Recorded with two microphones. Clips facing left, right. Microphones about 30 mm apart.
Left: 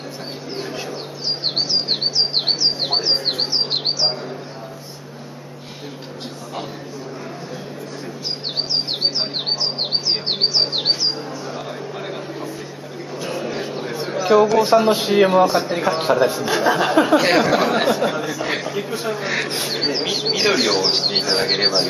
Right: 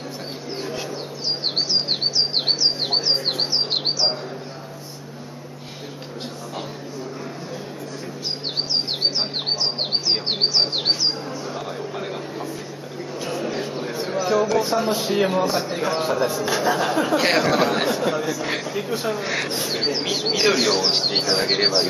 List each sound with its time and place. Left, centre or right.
0.6 s bird: centre
9.0 s bird: centre
13.2 s a sound: centre
14.9 s speech: left; by 16.0 s centre
16.0 s speech: left
17.2 s speech: centre